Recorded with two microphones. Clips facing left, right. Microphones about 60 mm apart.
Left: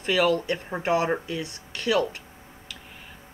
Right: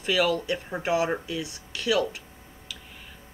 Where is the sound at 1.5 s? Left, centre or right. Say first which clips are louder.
Left 1 dB; left.